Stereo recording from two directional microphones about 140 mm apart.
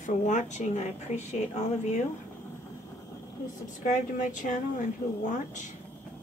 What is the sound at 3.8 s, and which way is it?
Speech, 65° left (ahead or behind).